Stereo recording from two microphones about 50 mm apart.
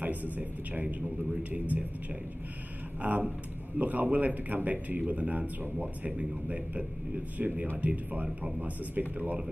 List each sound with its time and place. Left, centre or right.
0.4 s speech: right
3.0 s speech: right